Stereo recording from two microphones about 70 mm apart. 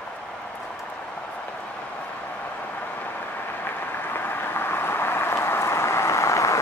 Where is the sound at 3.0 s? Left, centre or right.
Left.